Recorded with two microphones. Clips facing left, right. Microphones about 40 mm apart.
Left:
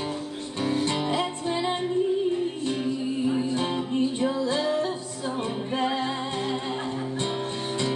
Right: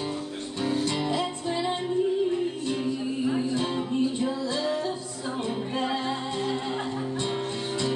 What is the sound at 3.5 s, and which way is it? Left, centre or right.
Music, left.